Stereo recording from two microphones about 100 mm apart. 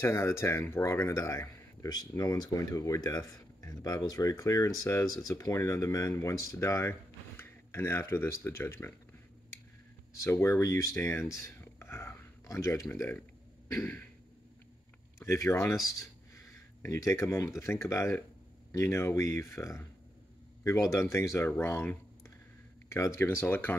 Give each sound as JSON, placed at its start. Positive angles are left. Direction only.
{"t": 0.0, "sound": "speech", "side_deg": 25}
{"t": 10.2, "sound": "speech", "side_deg": 30}
{"t": 15.1, "sound": "speech", "side_deg": 30}
{"t": 22.8, "sound": "speech", "side_deg": 30}